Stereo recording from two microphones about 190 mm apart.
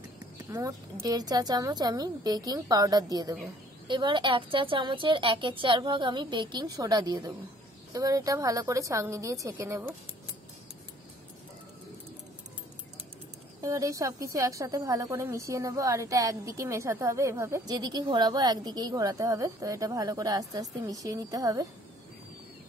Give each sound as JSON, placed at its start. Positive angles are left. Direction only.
{"t": 0.5, "sound": "a woman's voice", "side_deg": -15}
{"t": 13.6, "sound": "speech", "side_deg": -15}